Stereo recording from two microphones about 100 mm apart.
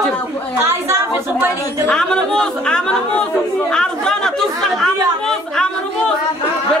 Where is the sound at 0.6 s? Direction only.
30° right (ahead or behind).